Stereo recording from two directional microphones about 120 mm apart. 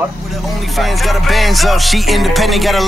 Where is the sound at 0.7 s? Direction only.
Centre (ahead or behind).